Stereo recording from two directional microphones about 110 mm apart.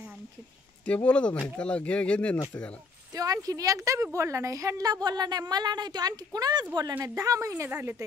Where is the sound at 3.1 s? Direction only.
35° right (ahead or behind).